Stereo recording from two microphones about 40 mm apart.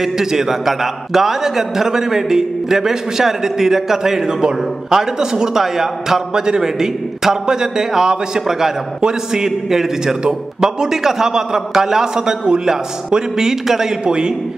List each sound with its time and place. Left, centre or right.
0.0 s a man's voice: centre